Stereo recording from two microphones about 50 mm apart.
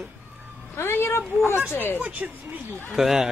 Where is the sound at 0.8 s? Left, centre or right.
Left.